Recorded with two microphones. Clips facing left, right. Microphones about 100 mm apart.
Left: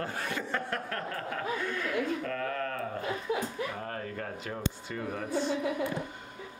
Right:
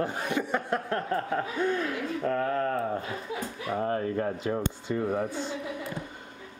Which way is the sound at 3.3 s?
60° left (ahead or behind).